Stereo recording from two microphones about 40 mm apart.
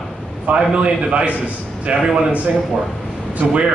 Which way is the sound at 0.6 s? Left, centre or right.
Right.